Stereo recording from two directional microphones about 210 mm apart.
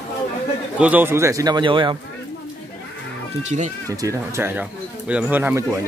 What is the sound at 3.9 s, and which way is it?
Speech, 15° right (ahead or behind).